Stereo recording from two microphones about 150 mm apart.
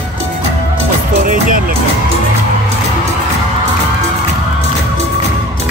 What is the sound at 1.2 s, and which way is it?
Music, 65° right (ahead or behind).